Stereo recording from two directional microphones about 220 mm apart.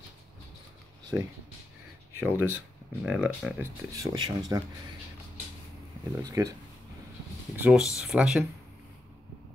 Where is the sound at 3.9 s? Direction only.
15° right (ahead or behind).